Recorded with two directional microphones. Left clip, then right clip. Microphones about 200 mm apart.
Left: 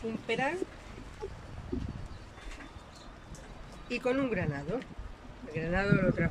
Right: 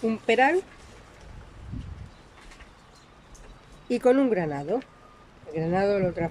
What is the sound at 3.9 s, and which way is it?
Speech, 35° right (ahead or behind).